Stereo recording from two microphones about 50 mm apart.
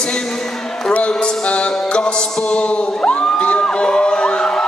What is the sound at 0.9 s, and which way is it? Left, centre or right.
Music, left.